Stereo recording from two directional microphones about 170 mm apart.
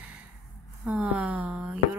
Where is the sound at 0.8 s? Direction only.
10° right (ahead or behind).